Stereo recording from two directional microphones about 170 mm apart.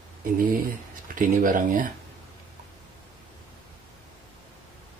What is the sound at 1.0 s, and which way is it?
Speech, 55° right (ahead or behind).